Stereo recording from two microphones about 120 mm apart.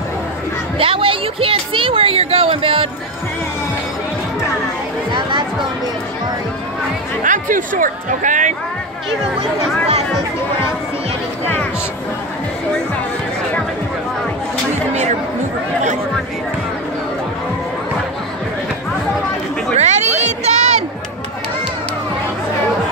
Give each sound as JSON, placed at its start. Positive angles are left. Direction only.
{"t": 0.7, "sound": "speech", "side_deg": -50}
{"t": 7.2, "sound": "speech", "side_deg": -90}
{"t": 19.7, "sound": "a sound", "side_deg": -70}